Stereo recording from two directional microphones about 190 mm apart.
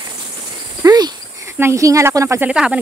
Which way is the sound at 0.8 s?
20° right (ahead or behind).